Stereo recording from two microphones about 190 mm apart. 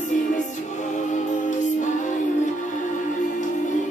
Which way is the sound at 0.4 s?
40° left (ahead or behind).